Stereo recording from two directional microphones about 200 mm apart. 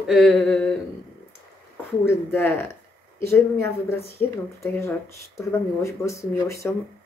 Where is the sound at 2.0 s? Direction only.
10° left (ahead or behind).